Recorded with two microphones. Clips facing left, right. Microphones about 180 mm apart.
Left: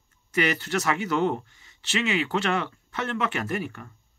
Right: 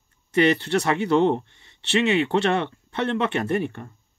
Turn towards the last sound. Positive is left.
turn(degrees=-25)  # may be behind; listen again after turning